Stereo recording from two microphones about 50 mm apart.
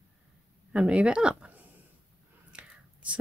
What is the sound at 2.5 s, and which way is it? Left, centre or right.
Whispering, right.